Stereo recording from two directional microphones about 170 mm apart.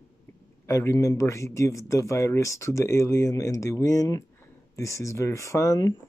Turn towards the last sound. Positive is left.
turn(degrees=20)  # may be behind; listen again after turning